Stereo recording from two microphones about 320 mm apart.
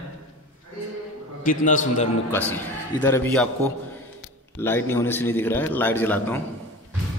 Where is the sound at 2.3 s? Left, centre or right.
Centre.